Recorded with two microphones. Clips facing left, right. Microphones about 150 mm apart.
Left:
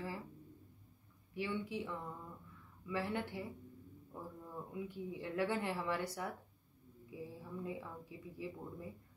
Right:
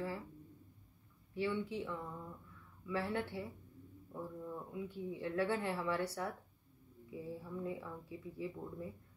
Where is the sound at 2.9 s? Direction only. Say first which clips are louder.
Right 1 dB; 20° left (ahead or behind).